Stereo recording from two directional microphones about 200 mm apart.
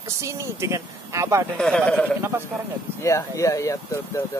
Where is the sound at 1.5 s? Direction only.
5° left (ahead or behind).